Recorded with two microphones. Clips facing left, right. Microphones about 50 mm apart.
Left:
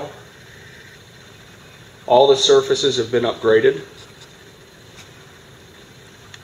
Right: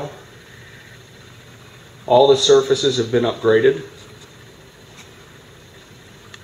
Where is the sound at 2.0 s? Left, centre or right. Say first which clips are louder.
Even; centre.